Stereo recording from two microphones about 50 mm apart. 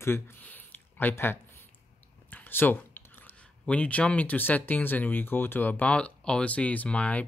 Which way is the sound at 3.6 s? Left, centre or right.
Left.